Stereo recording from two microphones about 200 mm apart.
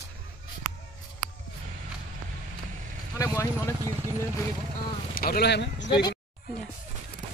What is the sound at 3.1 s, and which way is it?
Speech, 15° left (ahead or behind).